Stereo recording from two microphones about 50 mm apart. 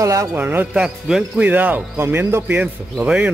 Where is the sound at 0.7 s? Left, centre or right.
Centre.